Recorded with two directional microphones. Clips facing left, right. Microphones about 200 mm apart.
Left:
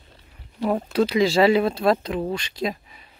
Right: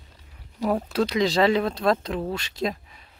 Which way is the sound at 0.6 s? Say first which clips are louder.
Left 2 dB; centre (ahead or behind).